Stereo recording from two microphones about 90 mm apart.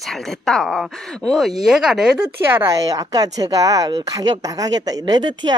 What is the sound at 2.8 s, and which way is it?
Speech, 40° right (ahead or behind).